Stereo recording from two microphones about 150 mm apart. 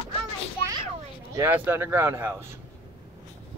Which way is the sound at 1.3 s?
15° right (ahead or behind).